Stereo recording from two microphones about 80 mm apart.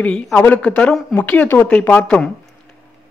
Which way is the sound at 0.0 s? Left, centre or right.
Centre.